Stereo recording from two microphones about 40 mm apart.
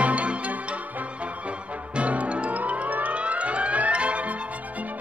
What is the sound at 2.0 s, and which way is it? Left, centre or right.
Music, right.